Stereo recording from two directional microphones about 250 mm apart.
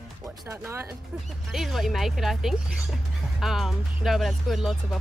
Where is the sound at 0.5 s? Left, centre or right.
Centre.